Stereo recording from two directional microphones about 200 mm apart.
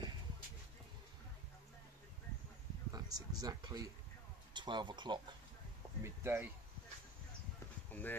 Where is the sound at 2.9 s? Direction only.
20° right (ahead or behind).